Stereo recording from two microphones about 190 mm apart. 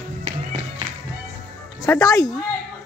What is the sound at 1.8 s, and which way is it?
Speech, 15° left (ahead or behind).